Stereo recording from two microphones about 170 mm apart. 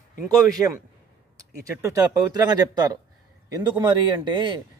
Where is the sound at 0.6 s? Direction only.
10° right (ahead or behind).